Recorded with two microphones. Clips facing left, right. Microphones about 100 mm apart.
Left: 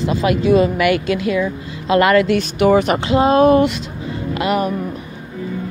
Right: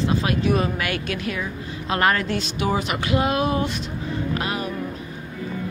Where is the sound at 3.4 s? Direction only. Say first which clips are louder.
Left 11 dB; 75° left (ahead or behind).